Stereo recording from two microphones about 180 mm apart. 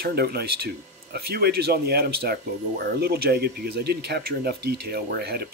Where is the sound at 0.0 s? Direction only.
60° right (ahead or behind).